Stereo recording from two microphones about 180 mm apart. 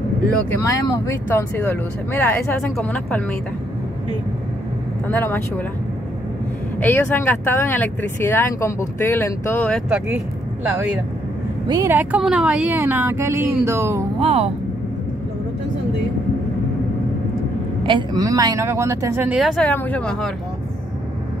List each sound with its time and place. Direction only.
0.5 s speech: 20° left (ahead or behind)
5.0 s speech: 10° left (ahead or behind)
6.8 s speech: 10° left (ahead or behind)
11.6 s speech: 20° right (ahead or behind)
14.2 s speech: 35° right (ahead or behind)
17.8 s speech: 25° right (ahead or behind); by 20.2 s 5° left (ahead or behind)